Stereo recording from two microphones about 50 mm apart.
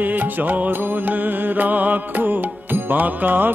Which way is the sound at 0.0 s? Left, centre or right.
Right.